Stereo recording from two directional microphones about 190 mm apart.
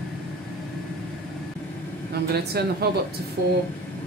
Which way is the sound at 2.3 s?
55° right (ahead or behind).